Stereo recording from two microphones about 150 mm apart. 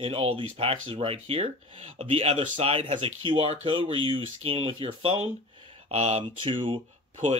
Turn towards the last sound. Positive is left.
turn(degrees=-35)  # may be behind; listen again after turning